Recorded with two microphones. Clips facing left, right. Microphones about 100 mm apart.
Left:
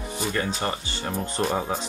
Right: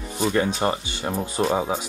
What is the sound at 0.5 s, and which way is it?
Speech, 15° right (ahead or behind).